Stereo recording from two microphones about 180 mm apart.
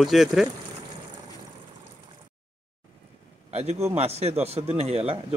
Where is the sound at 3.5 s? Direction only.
35° right (ahead or behind).